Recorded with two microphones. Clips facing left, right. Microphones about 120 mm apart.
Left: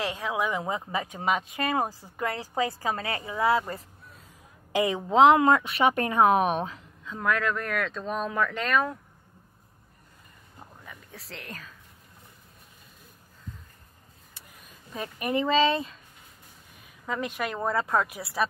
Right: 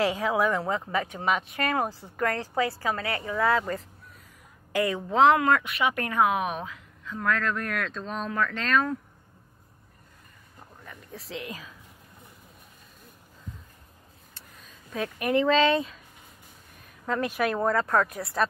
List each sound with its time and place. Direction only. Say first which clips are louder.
0.0 s speech: right 5 dB; 5° right (ahead or behind)
0.7 s a woman's voice: right 2 dB; 15° left (ahead or behind)
3.3 s a woman's voice: even; 10° left (ahead or behind); by 6.8 s 30° left (ahead or behind)
7.1 s speech: left 1 dB; 15° left (ahead or behind)
7.5 s speech: left 1 dB; centre (ahead or behind)
10.9 s speech: right 7 dB; centre (ahead or behind)
15.0 s speech: right 3 dB; 5° left (ahead or behind)